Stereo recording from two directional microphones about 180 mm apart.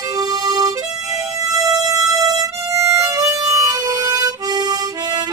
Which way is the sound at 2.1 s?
20° right (ahead or behind).